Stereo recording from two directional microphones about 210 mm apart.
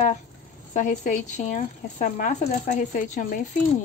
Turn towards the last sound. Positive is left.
turn(degrees=40)  # may be behind; listen again after turning